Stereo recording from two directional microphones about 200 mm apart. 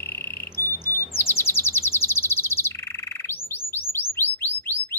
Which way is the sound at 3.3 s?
10° left (ahead or behind).